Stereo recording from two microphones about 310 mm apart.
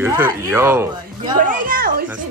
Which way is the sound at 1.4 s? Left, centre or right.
Right.